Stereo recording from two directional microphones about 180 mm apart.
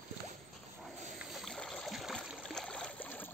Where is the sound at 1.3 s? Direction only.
Centre (ahead or behind).